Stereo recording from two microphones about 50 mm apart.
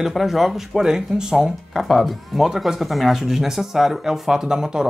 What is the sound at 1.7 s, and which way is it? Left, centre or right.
Speech, centre.